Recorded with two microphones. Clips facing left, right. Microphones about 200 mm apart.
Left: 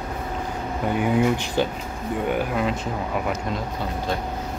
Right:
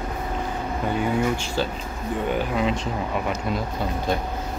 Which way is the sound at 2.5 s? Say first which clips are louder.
Right 1 dB; centre (ahead or behind).